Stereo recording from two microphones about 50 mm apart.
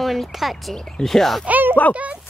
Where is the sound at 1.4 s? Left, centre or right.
Right.